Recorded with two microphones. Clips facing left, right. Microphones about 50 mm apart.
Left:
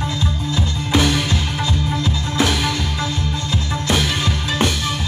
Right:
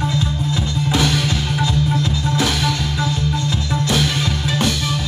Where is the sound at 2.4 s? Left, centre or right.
Centre.